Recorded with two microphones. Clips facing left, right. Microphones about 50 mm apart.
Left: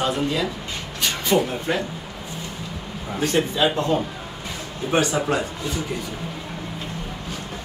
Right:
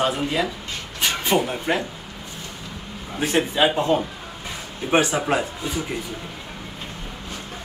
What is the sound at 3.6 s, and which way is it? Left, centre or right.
Speech, right.